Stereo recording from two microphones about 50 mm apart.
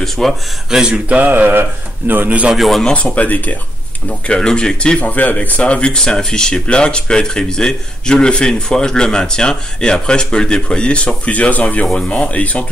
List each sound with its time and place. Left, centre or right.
0.0 s speech: centre
0.7 s speech: centre
0.9 s speech: right
2.5 s speech: centre
2.9 s speech: left
4.3 s speech: centre
5.0 s speech: left